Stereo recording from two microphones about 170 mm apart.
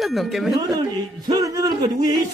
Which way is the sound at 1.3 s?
20° right (ahead or behind).